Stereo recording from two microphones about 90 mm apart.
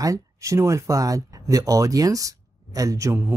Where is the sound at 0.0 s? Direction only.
35° right (ahead or behind).